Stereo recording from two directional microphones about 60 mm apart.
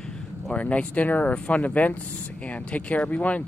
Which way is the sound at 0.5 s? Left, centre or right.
Left.